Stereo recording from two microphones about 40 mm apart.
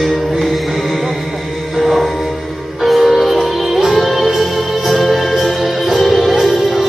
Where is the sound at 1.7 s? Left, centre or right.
Centre.